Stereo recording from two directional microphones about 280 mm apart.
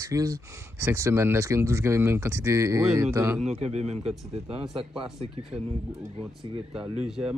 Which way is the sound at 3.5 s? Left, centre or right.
Right.